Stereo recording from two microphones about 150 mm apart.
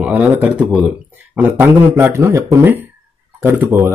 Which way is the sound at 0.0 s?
10° right (ahead or behind).